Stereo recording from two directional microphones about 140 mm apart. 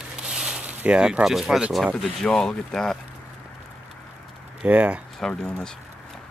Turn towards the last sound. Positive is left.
turn(degrees=5)  # may be behind; listen again after turning